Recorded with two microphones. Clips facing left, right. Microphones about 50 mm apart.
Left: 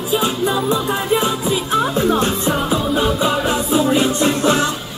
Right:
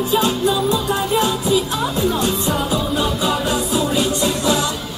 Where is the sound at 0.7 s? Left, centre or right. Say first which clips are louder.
Left 1 dB; left.